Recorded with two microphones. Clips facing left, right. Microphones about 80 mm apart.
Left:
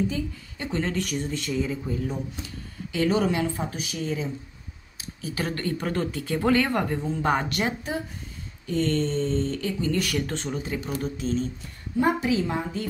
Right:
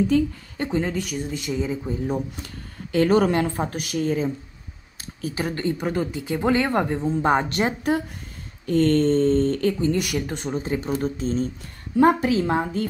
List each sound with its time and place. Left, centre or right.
0.7 s speech: centre
1.3 s speech: centre
2.0 s speech: right
5.3 s speech: right
8.6 s speech: right
9.8 s speech: right
10.5 s speech: right